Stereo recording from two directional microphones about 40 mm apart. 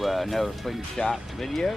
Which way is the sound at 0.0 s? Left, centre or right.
Centre.